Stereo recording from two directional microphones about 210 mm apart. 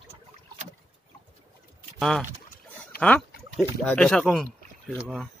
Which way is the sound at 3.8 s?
5° left (ahead or behind).